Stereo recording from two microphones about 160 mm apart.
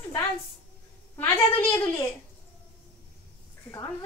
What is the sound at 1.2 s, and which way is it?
Speech, 20° left (ahead or behind).